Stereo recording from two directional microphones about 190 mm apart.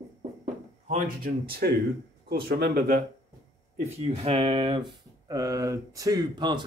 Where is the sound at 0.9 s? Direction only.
40° right (ahead or behind).